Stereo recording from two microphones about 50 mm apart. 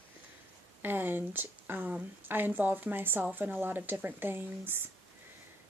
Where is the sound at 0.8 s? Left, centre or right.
Right.